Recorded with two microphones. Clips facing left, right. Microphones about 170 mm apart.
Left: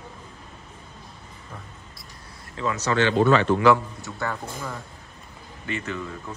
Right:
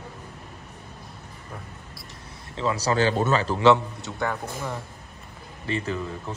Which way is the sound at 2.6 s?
30° right (ahead or behind).